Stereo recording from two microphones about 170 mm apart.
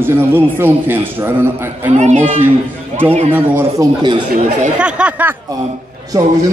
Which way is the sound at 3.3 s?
10° right (ahead or behind).